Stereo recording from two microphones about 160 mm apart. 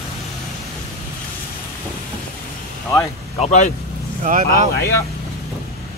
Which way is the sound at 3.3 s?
45° left (ahead or behind).